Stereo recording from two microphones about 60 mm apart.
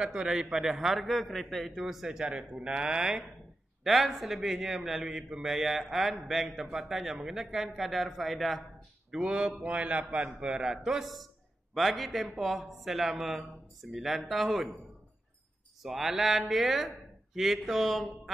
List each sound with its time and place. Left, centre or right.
0.0 s a man's voice: centre
3.8 s a man's voice: centre
9.1 s a man's voice: centre
10.8 s a man's voice: centre
15.8 s a man's voice: centre